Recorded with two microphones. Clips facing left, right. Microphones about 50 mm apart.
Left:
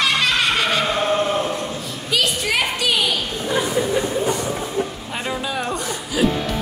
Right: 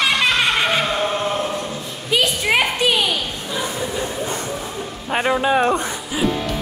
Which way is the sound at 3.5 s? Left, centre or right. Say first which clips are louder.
Left 5 dB; left.